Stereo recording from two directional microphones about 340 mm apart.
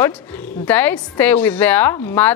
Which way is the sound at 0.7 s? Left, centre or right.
Centre.